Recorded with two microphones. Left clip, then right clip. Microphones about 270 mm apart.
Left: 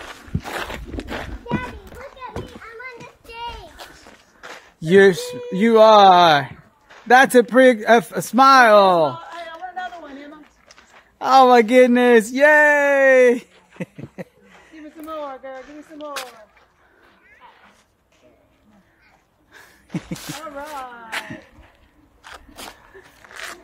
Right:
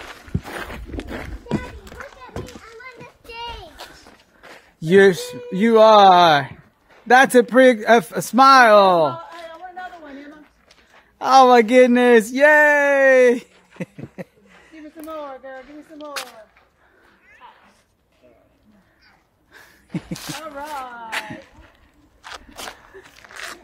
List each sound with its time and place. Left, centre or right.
0.5 s walk: centre
1.0 s run: centre
3.0 s child singing: centre
4.4 s a sound: left
4.7 s speech: centre
9.8 s a sound: centre
20.4 s speech: centre
23.2 s zipper: centre